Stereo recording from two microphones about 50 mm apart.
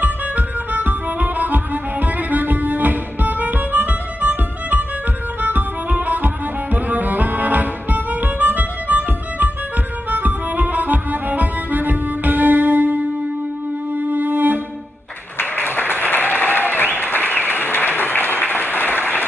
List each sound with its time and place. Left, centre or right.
0.0 s music: right
13.9 s music: right
15.3 s applause: left